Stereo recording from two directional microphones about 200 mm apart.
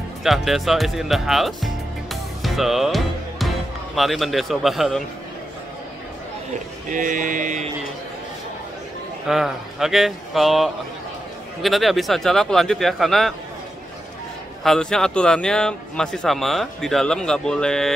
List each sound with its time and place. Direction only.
0.2 s speech: centre (ahead or behind)
6.9 s speech: 40° right (ahead or behind)
9.3 s speech: centre (ahead or behind)
14.6 s speech: 5° left (ahead or behind)